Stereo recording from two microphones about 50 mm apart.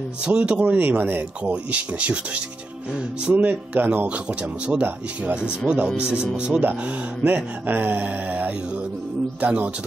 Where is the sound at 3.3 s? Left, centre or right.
Right.